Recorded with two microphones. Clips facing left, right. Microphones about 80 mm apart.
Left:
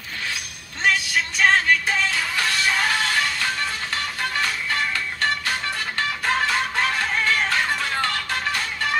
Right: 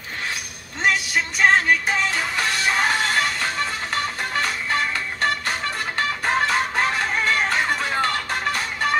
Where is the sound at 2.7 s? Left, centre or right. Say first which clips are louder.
Right 1 dB; right.